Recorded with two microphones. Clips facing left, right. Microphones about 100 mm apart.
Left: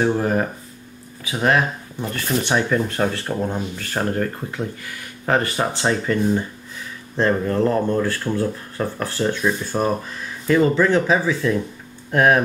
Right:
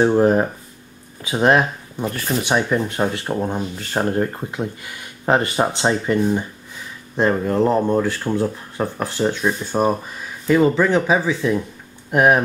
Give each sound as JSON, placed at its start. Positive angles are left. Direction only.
{"t": 0.0, "sound": "speech", "side_deg": -20}
{"t": 2.1, "sound": "speech", "side_deg": -10}